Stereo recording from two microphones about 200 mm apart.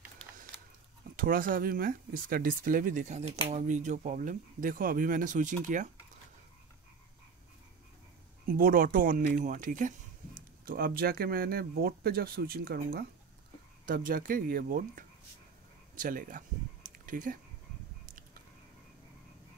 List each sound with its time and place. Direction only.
1.1 s speech: 45° right (ahead or behind)
8.5 s speech: 45° right (ahead or behind)
15.9 s a sound: 45° right (ahead or behind)